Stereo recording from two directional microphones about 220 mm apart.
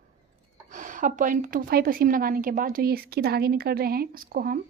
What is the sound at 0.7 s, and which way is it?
A woman's voice, 35° right (ahead or behind).